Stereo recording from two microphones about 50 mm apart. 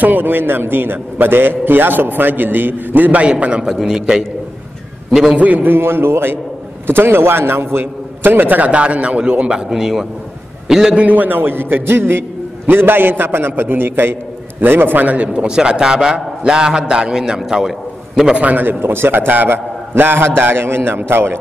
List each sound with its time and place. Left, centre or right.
0.0 s a man's voice: right
5.3 s a man's voice: right; by 11.0 s centre
11.0 s a man's voice: right; by 18.3 s centre
18.3 s a man's voice: right
18.8 s a man's voice: right